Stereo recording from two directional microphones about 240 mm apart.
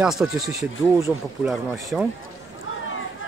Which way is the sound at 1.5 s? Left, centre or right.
Centre.